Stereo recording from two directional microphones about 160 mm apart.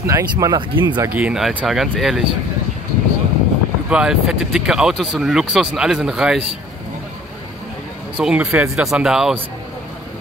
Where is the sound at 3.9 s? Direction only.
5° right (ahead or behind).